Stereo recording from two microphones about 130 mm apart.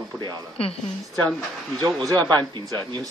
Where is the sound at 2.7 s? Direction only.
30° right (ahead or behind).